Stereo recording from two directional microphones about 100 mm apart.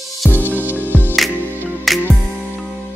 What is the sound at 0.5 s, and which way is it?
Music, 20° right (ahead or behind).